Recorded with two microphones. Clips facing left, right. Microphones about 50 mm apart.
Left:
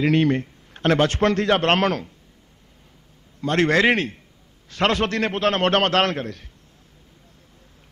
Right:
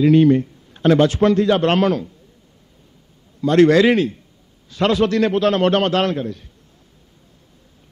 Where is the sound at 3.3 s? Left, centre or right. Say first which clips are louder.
Right 7 dB; left.